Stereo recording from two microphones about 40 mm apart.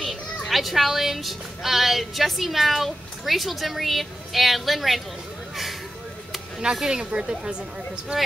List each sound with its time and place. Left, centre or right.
0.0 s a child's voice: centre
6.6 s a woman's voice: centre